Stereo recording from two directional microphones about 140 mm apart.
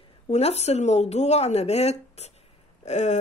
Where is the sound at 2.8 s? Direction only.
55° left (ahead or behind).